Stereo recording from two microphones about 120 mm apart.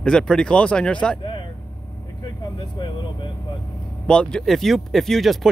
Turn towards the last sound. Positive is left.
turn(degrees=0)  # may be behind; listen again after turning